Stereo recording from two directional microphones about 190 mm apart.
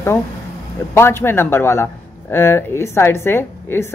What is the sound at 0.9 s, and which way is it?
A woman's voice, 15° left (ahead or behind).